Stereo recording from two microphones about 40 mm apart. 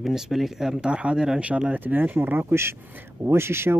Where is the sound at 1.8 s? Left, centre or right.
Right.